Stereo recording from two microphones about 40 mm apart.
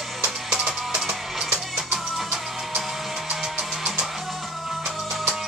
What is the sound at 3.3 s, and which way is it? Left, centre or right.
Music, right.